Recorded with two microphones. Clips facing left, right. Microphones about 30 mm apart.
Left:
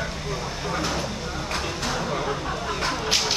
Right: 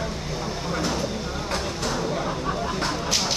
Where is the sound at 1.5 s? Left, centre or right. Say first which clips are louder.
Even; centre.